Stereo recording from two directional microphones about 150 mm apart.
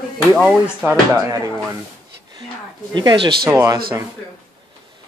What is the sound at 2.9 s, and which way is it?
Speech, 25° right (ahead or behind).